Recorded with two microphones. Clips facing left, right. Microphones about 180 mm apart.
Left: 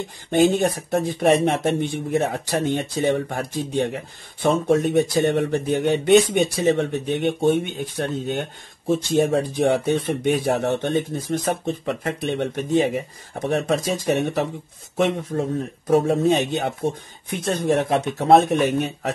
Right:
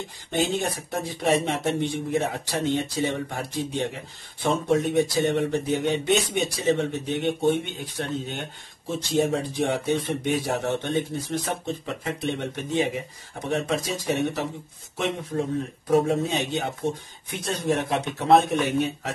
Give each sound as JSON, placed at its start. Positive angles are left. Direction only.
{"t": 0.4, "sound": "speech", "side_deg": 50}
{"t": 15.9, "sound": "speech", "side_deg": 60}